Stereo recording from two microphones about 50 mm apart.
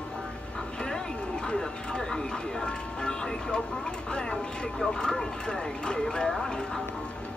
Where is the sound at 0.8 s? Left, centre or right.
Centre.